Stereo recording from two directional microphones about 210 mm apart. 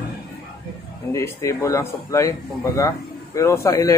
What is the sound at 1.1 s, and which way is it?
Speech, 15° left (ahead or behind).